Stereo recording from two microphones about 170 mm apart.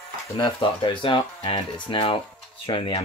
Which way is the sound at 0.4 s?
30° left (ahead or behind).